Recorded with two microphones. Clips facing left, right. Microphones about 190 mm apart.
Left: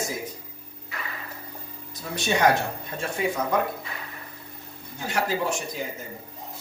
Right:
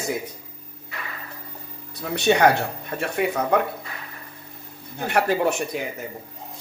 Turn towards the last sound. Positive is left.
turn(degrees=-60)  # may be behind; listen again after turning